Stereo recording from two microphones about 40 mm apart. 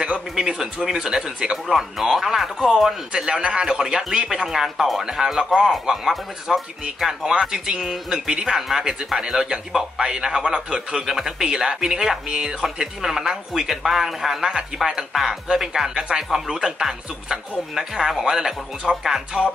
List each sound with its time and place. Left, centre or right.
0.8 s speech: centre
3.1 s speech: centre
12.3 s speech: centre